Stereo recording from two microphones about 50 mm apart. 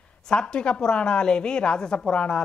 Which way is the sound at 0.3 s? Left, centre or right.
Centre.